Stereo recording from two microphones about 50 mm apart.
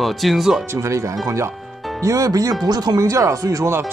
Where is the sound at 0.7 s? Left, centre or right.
Right.